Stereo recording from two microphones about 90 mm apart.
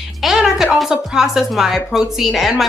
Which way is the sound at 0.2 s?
5° right (ahead or behind).